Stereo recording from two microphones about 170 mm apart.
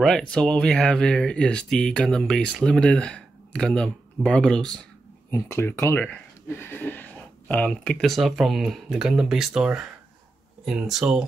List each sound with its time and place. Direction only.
0.3 s speech: 5° left (ahead or behind)
5.3 s speech: 15° left (ahead or behind); by 11.2 s centre (ahead or behind)